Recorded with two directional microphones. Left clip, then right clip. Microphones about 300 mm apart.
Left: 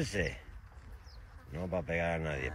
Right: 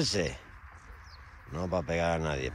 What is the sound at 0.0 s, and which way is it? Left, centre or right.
Speech, right.